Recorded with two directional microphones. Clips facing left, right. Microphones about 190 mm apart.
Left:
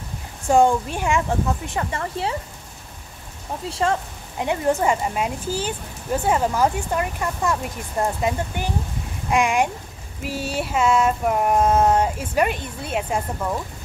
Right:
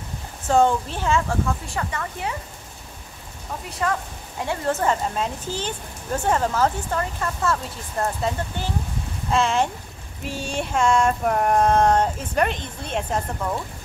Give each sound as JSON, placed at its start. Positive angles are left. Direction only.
{"t": 0.5, "sound": "a woman's voice", "side_deg": 10}
{"t": 1.7, "sound": "speech", "side_deg": 25}
{"t": 3.7, "sound": "a woman's voice", "side_deg": 25}